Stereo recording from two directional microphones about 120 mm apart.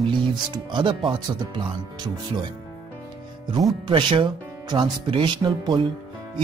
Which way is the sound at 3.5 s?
45° right (ahead or behind).